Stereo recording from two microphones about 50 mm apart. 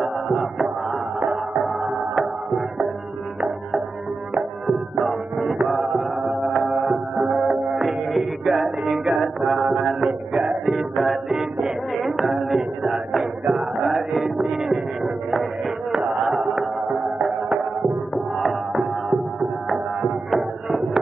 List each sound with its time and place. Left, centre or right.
0.0 s music: centre
4.6 s music: centre
10.0 s music: right
10.6 s music: centre
14.5 s a sound: centre
15.9 s a sound: right
16.9 s music: centre